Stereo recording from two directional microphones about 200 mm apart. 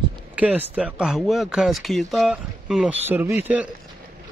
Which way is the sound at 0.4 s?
5° right (ahead or behind).